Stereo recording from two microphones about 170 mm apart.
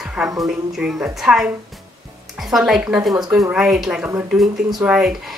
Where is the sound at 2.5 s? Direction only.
5° right (ahead or behind).